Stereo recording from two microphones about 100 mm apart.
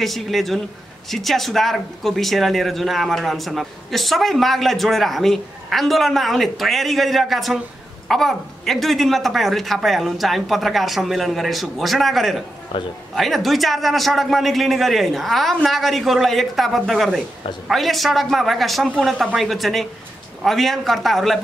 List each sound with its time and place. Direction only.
0.0 s speech: centre (ahead or behind)
12.7 s a man's voice: 55° left (ahead or behind)
13.1 s speech: centre (ahead or behind)